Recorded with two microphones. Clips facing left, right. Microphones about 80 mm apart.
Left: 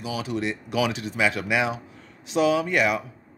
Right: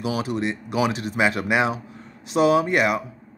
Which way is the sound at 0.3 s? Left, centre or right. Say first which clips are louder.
Right 2 dB; right.